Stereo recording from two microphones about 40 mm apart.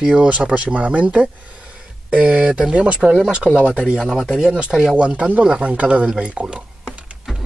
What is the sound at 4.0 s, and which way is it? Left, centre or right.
Speech, centre.